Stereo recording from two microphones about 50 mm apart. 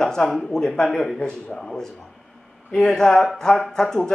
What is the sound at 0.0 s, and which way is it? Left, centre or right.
Speech, centre.